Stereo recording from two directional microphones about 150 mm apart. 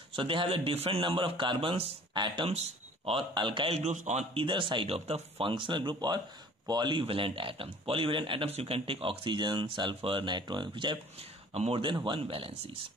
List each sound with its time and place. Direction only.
0.1 s speech: 35° right (ahead or behind)
3.8 s speech: 50° right (ahead or behind)